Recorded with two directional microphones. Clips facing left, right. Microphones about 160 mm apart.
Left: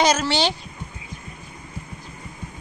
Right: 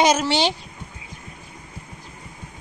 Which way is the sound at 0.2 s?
15° right (ahead or behind).